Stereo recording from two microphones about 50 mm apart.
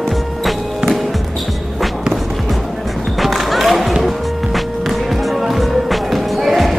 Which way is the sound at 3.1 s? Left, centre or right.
Centre.